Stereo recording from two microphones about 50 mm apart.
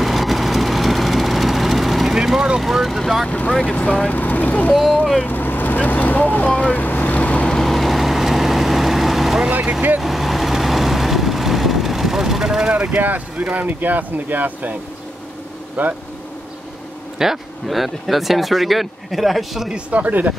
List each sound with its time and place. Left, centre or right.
0.0 s vehicle: centre
3.3 s speech: left
4.2 s speech: left
5.2 s vehicle: left
7.4 s vehicle: centre
7.7 s vehicle: centre
9.5 s vehicle: right
9.9 s vehicle: centre
12.7 s speech: right
17.2 s speech: centre
19.9 s speech: right